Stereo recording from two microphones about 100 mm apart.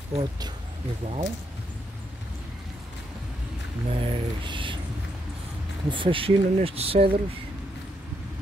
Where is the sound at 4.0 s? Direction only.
55° right (ahead or behind).